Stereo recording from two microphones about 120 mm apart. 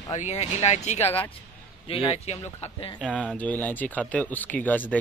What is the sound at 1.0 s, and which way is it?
Speech, 20° left (ahead or behind).